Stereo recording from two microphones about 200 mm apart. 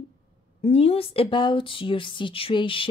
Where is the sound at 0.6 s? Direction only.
30° left (ahead or behind).